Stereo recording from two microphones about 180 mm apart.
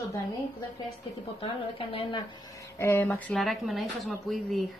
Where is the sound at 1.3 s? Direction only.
30° left (ahead or behind).